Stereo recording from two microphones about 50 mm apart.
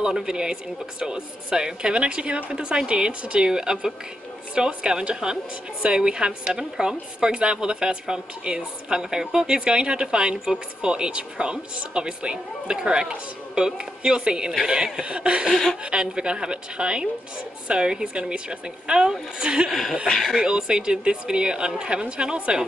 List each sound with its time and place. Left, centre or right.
0.0 s a woman's voice: centre
15.5 s speech: centre
15.8 s a woman's voice: centre
19.7 s speech: centre
20.4 s a woman's voice: centre